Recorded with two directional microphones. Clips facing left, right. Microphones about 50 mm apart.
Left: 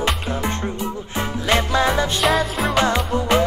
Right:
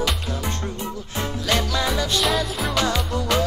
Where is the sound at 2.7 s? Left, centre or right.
Left.